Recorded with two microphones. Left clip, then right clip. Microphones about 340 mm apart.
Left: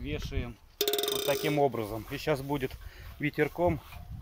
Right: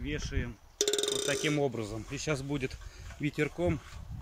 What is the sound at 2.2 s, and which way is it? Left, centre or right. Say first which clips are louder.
Speech: left 3 dB; left.